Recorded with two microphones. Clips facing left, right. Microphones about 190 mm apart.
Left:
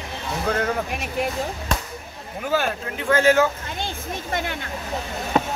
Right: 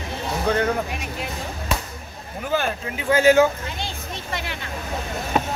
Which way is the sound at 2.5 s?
5° left (ahead or behind).